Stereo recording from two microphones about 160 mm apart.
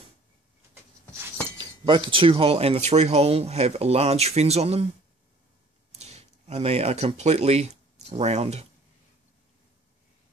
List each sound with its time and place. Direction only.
1.6 s speech: 30° right (ahead or behind)
5.9 s speech: 40° right (ahead or behind)